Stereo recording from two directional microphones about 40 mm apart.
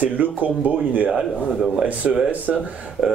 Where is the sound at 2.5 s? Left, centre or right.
Centre.